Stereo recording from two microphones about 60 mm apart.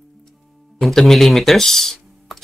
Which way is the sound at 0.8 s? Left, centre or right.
Centre.